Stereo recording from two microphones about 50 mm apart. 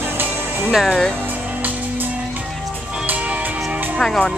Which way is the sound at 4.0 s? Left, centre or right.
Centre.